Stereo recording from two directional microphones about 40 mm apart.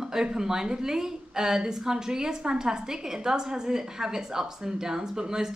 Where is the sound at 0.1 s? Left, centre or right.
Centre.